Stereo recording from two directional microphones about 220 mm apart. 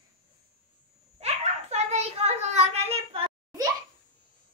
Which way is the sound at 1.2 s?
30° right (ahead or behind).